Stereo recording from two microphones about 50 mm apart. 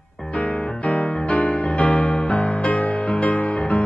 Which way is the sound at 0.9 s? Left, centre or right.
Left.